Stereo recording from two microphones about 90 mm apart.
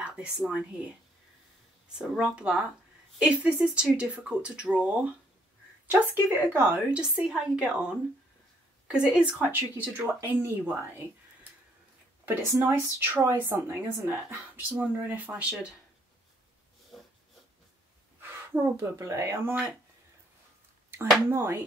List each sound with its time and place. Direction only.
0.0 s a sound: 15° right (ahead or behind)
0.4 s speech: 10° right (ahead or behind)
2.0 s a woman's voice: 10° right (ahead or behind)
7.0 s speech: 10° right (ahead or behind)
8.8 s a woman's voice: 10° right (ahead or behind)
12.4 s a woman's voice: 30° right (ahead or behind)
18.5 s a woman's voice: 25° right (ahead or behind)
21.3 s a woman's voice: 30° right (ahead or behind)